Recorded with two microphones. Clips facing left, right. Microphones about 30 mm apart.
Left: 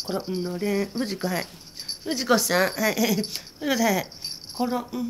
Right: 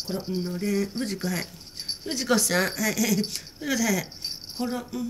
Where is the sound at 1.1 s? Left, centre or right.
Centre.